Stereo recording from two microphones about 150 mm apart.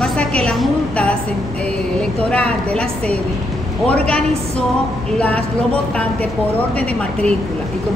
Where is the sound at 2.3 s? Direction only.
10° left (ahead or behind).